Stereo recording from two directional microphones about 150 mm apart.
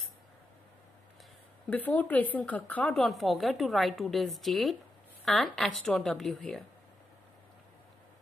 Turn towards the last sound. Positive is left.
turn(degrees=0)  # may be behind; listen again after turning